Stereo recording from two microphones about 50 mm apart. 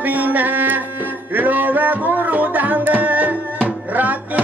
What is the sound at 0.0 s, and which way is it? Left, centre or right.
Music, right.